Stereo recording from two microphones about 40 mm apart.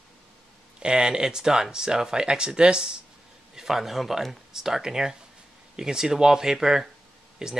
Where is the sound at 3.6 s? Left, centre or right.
Centre.